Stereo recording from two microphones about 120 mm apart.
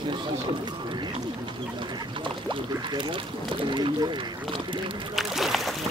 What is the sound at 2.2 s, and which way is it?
Rowboat, 40° right (ahead or behind).